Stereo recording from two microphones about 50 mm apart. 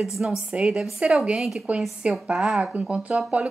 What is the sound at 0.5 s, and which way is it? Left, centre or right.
Speech, right.